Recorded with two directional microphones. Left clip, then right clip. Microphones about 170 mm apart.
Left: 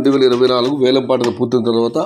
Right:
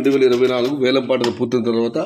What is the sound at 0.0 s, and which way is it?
Speech, centre (ahead or behind).